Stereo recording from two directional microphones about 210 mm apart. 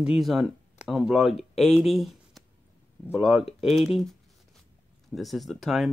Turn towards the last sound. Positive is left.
turn(degrees=0)  # may be behind; listen again after turning